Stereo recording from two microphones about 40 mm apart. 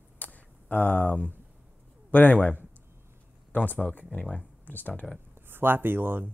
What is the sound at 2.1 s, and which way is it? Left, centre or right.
Speech, left.